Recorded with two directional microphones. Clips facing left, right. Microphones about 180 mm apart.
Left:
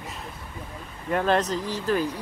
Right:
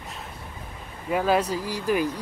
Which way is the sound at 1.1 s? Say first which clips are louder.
Even; 5° right (ahead or behind).